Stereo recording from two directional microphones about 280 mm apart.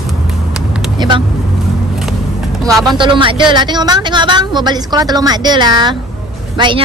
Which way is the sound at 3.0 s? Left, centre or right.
Centre.